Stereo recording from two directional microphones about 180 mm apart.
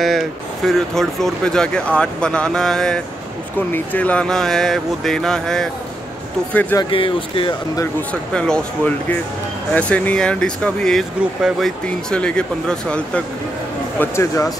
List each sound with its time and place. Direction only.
0.0 s speech: centre (ahead or behind)
6.8 s speech: 30° left (ahead or behind)
7.8 s speech: 5° left (ahead or behind)